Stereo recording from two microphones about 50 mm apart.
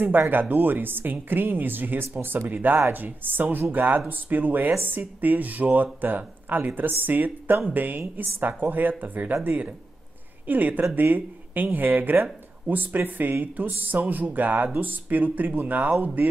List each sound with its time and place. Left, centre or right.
0.3 s speech: right